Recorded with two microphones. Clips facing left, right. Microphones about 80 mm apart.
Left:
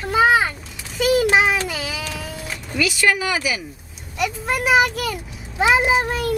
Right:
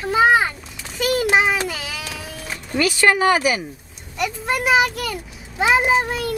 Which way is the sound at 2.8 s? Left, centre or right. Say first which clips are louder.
Right 3 dB; right.